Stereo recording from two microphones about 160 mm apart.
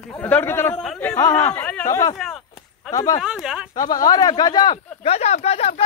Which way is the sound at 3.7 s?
25° left (ahead or behind).